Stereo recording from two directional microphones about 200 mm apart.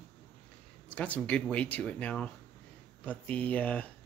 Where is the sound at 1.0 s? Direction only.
5° left (ahead or behind).